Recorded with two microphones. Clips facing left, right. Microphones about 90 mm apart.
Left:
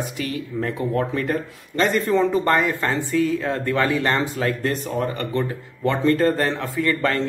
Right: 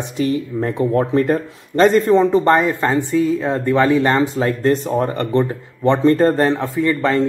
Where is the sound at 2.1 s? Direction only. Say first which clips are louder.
Right 5 dB; 20° right (ahead or behind).